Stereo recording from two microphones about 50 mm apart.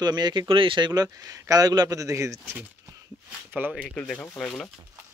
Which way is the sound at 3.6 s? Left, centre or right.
Right.